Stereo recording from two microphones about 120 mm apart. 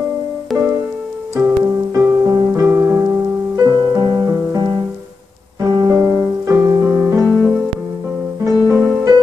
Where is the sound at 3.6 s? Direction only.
35° right (ahead or behind).